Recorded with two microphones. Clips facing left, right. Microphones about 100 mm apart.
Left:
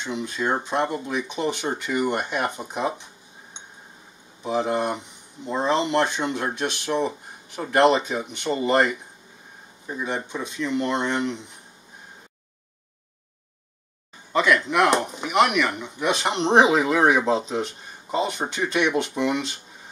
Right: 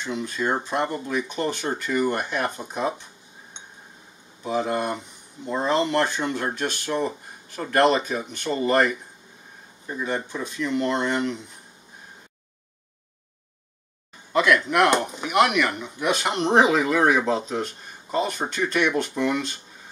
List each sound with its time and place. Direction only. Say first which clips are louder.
0.0 s speech: even; 15° left (ahead or behind)
4.4 s speech: left 1 dB; 10° left (ahead or behind)
14.3 s speech: even; centre (ahead or behind)
16.2 s speech: left 2 dB; 20° left (ahead or behind)